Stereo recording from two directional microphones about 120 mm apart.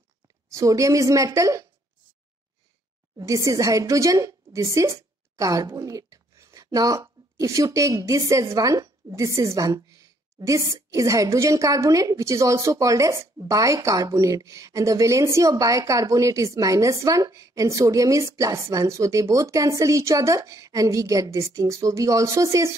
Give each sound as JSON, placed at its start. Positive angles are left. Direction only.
{"t": 0.5, "sound": "a woman's voice", "side_deg": -25}
{"t": 3.2, "sound": "a woman's voice", "side_deg": -25}